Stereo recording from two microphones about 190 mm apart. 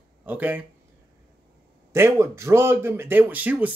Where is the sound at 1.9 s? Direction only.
15° right (ahead or behind).